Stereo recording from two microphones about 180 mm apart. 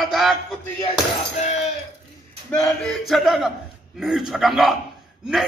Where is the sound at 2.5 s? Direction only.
5° left (ahead or behind).